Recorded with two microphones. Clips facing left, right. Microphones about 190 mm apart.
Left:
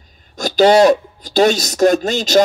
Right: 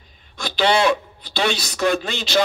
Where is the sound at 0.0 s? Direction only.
45° left (ahead or behind).